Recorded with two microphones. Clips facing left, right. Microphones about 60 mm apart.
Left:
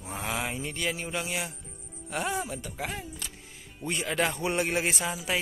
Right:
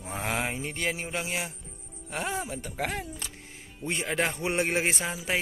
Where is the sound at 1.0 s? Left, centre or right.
Right.